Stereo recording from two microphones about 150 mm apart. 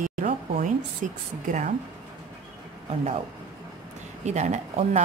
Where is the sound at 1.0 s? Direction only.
60° right (ahead or behind).